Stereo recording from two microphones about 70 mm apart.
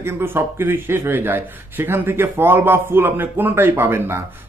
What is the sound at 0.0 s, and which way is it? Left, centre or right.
Speech, right.